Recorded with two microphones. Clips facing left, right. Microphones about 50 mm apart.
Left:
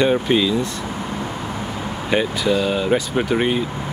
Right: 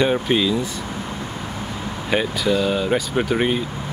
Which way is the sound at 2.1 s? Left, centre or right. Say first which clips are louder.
Left 1 dB; centre.